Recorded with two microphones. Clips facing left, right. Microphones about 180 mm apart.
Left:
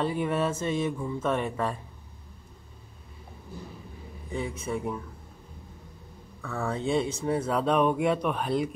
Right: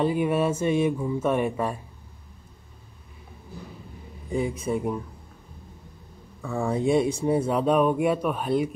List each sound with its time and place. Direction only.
0.0 s speech: 10° right (ahead or behind)
4.3 s speech: 20° right (ahead or behind)
4.7 s speech: 10° right (ahead or behind)
6.4 s speech: 15° right (ahead or behind)